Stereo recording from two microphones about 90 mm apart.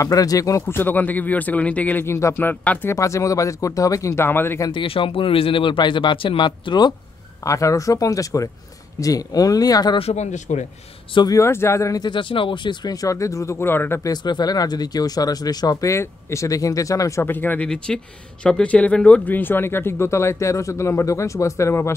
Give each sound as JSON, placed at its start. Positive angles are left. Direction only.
{"t": 0.0, "sound": "speech", "side_deg": 40}
{"t": 2.0, "sound": "speech", "side_deg": 30}
{"t": 2.9, "sound": "speech", "side_deg": 35}
{"t": 4.6, "sound": "speech", "side_deg": 75}
{"t": 7.4, "sound": "speech", "side_deg": 35}
{"t": 11.2, "sound": "speech", "side_deg": 35}
{"t": 12.0, "sound": "speech", "side_deg": 60}
{"t": 12.8, "sound": "speech", "side_deg": 40}
{"t": 14.0, "sound": "speech", "side_deg": 50}
{"t": 17.2, "sound": "speech", "side_deg": 20}
{"t": 17.6, "sound": "speech", "side_deg": 10}